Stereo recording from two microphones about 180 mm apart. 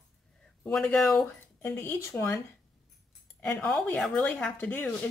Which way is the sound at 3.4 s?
5° left (ahead or behind).